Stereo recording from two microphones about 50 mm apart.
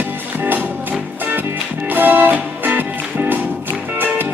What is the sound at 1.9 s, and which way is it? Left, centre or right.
Music, right.